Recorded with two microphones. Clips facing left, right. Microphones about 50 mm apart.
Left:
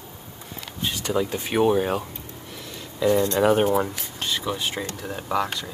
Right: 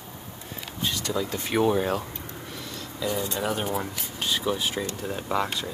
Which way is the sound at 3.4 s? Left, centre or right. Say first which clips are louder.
Left 11 dB; left.